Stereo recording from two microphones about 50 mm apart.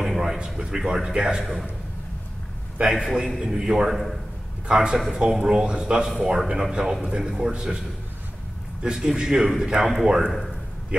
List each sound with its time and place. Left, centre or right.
0.0 s a sound: centre
0.5 s a man's voice: centre
1.4 s a man's voice: centre
2.8 s a man's voice: centre
8.8 s a man's voice: centre